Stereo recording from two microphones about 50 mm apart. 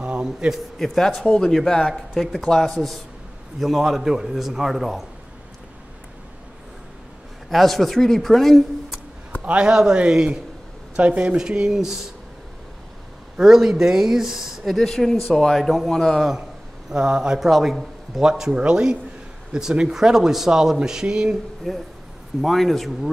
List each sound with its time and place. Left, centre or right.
0.0 s a sound: right
0.7 s a man's voice: centre
7.4 s a man's voice: centre
9.4 s a man's voice: right
9.7 s speech: centre
11.0 s a man's voice: right
11.3 s speech: centre
13.4 s speech: centre
14.9 s a man's voice: centre
16.9 s speech: centre
17.5 s a man's voice: centre
18.5 s a man's voice: right
21.7 s a man's voice: centre